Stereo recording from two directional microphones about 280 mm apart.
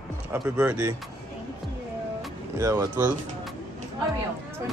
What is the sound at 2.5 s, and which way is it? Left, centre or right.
Speech, centre.